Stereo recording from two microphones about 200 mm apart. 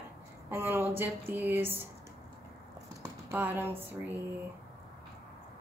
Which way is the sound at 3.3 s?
10° right (ahead or behind).